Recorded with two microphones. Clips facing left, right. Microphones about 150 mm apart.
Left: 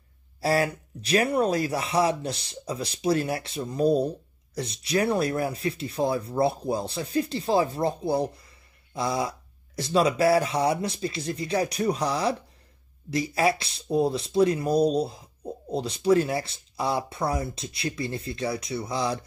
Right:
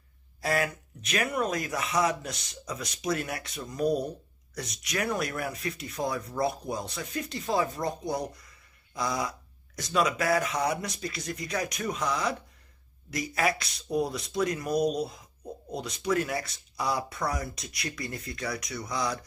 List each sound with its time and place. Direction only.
0.4 s speech: 30° left (ahead or behind)